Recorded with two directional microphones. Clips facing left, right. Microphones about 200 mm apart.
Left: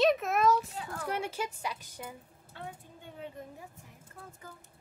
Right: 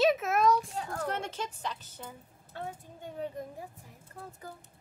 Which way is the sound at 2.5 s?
45° right (ahead or behind).